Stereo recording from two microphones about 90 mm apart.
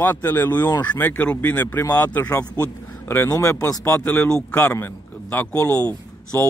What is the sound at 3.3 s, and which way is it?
Speech, 40° left (ahead or behind).